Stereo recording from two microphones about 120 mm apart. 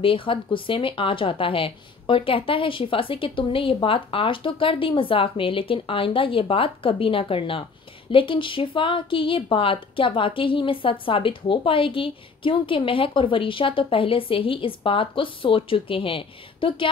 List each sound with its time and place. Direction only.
0.0 s a woman's voice: 45° left (ahead or behind)